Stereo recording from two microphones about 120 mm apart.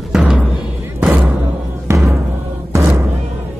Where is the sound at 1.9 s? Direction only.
20° right (ahead or behind).